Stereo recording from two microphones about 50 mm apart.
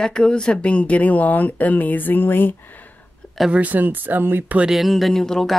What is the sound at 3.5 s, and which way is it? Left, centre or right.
Speech, right.